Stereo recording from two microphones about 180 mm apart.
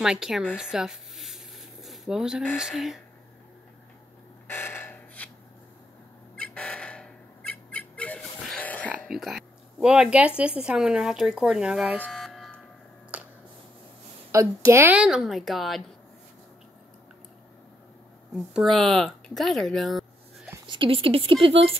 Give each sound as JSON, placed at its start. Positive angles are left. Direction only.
{"t": 0.0, "sound": "speech", "side_deg": 0}
{"t": 0.6, "sound": "a sound", "side_deg": -5}
{"t": 2.5, "sound": "speech", "side_deg": 0}
{"t": 4.5, "sound": "a sound", "side_deg": 15}
{"t": 6.3, "sound": "bird", "side_deg": 5}
{"t": 8.9, "sound": "speech", "side_deg": 0}
{"t": 12.0, "sound": "electric shaver", "side_deg": 0}
{"t": 13.1, "sound": "a sound", "side_deg": -5}
{"t": 14.3, "sound": "speech", "side_deg": -15}
{"t": 18.3, "sound": "speech", "side_deg": 0}
{"t": 20.6, "sound": "speech", "side_deg": -25}